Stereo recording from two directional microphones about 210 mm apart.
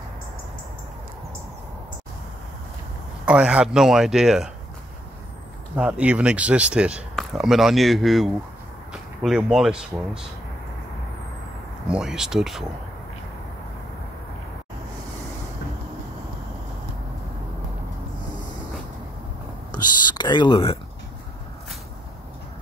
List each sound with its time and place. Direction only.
3.3 s a man's voice: 5° right (ahead or behind)
5.8 s a man's voice: 5° right (ahead or behind)
11.9 s a man's voice: 5° right (ahead or behind)
19.7 s speech: 20° left (ahead or behind)